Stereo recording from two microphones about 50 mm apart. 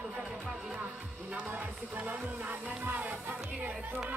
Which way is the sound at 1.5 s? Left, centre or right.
Right.